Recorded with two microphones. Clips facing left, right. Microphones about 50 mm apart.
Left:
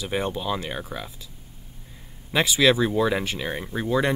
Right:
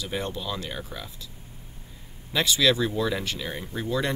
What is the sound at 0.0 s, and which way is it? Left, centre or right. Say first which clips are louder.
Speech: left 4 dB; left.